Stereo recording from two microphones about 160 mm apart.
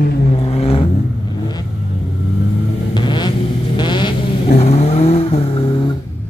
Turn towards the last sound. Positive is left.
turn(degrees=40)  # may be behind; listen again after turning